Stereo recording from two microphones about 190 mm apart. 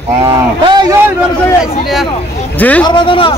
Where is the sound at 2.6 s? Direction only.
10° left (ahead or behind).